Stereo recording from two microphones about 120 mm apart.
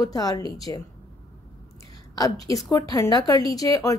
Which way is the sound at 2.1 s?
30° left (ahead or behind).